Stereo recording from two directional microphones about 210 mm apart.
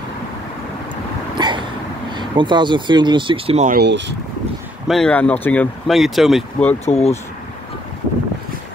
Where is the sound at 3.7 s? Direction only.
55° right (ahead or behind).